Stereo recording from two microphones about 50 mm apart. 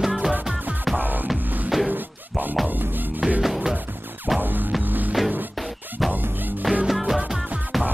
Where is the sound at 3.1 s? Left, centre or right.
Right.